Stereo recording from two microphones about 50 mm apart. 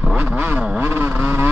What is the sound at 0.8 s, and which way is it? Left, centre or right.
Vehicle, right.